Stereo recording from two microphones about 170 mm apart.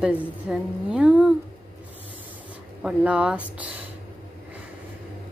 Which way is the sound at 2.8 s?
5° right (ahead or behind).